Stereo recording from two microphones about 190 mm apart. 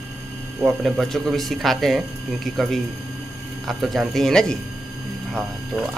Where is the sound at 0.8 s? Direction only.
Centre (ahead or behind).